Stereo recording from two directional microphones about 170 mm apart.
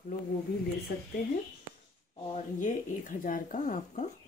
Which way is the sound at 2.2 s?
45° left (ahead or behind).